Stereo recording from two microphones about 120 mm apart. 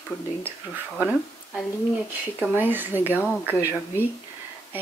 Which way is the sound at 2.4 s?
15° right (ahead or behind).